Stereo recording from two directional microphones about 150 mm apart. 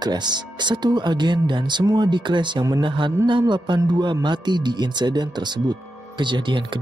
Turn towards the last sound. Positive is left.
turn(degrees=-30)  # may be behind; listen again after turning